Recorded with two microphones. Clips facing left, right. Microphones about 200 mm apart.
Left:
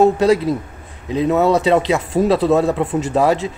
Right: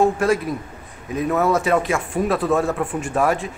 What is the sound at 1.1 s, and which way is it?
Speech, 20° left (ahead or behind).